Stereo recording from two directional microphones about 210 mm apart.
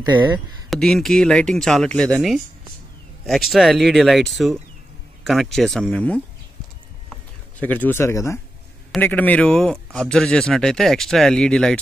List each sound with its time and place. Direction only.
0.7 s speech: centre (ahead or behind)
7.6 s speech: 10° left (ahead or behind)